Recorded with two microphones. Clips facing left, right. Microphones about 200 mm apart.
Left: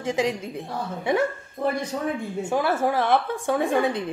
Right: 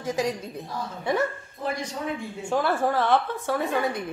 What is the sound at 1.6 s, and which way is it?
Speech, 60° left (ahead or behind).